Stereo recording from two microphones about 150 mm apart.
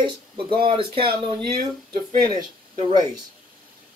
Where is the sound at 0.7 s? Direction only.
35° right (ahead or behind).